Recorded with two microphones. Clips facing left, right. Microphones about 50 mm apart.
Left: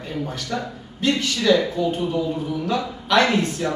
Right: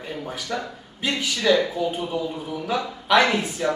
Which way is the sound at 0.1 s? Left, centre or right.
Centre.